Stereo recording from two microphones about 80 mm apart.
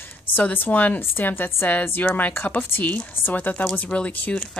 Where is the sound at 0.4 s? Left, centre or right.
Left.